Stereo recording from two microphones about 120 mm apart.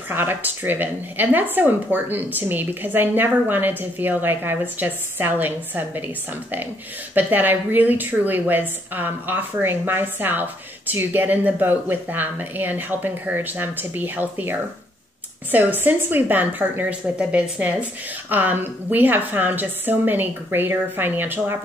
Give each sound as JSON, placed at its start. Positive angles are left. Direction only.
{"t": 0.1, "sound": "a woman's voice", "side_deg": -15}
{"t": 7.2, "sound": "a woman's voice", "side_deg": -15}